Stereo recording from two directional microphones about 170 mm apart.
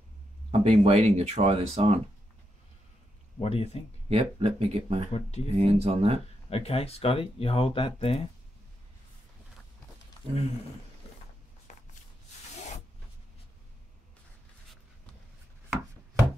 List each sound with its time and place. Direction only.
0.5 s speech: 35° right (ahead or behind)
3.3 s speech: 35° left (ahead or behind)
4.1 s speech: 35° right (ahead or behind)
5.1 s speech: 40° left (ahead or behind)
5.6 s speech: 35° right (ahead or behind)
6.5 s speech: 35° left (ahead or behind)